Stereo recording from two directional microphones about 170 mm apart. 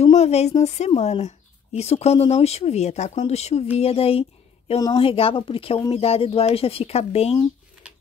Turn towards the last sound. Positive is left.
turn(degrees=35)  # may be behind; listen again after turning